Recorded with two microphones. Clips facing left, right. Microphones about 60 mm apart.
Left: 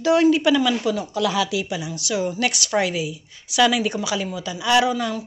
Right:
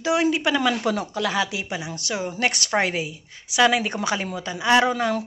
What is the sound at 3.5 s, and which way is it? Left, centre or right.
A woman's voice, right.